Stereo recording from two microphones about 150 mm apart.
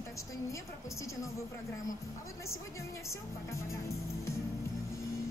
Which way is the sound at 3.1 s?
20° left (ahead or behind).